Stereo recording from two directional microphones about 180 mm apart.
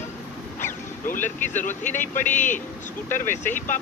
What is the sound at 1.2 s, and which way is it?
Speech, 45° left (ahead or behind).